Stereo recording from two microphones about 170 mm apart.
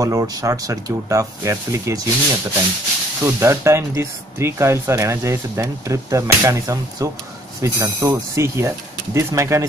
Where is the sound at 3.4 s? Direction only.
15° right (ahead or behind).